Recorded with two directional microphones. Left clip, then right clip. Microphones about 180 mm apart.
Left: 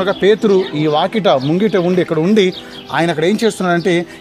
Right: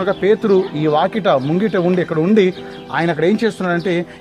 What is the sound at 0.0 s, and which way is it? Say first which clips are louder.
Speech: left 3 dB; 50° left (ahead or behind).